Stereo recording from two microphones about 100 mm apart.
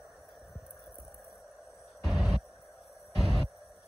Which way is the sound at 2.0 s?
Centre (ahead or behind).